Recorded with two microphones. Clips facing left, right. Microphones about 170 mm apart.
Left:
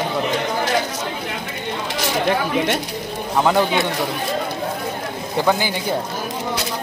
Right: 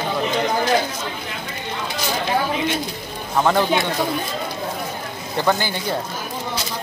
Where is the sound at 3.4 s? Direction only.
10° left (ahead or behind).